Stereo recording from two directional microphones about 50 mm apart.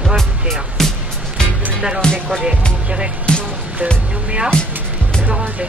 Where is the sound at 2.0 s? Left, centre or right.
Centre.